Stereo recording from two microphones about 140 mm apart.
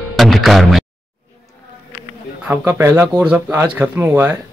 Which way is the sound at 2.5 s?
15° right (ahead or behind).